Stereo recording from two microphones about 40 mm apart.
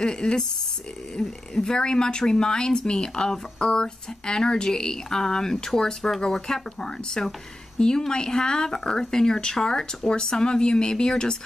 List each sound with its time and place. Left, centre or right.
0.0 s speech: centre
1.5 s speech: centre